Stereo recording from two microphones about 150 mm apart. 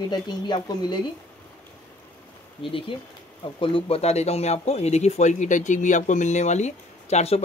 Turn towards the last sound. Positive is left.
turn(degrees=45)  # may be behind; listen again after turning